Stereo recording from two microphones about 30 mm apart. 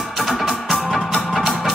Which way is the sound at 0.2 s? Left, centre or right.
Centre.